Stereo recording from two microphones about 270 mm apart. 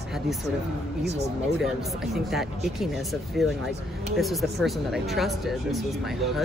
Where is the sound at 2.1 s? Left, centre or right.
Centre.